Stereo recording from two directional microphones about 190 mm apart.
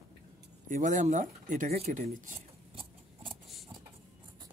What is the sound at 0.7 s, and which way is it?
Speech, 40° right (ahead or behind).